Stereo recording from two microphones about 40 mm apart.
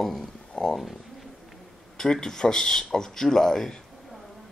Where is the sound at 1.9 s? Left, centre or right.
Centre.